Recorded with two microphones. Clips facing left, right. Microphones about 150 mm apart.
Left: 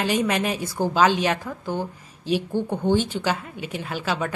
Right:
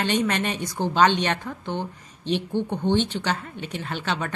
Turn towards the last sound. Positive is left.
turn(degrees=5)  # may be behind; listen again after turning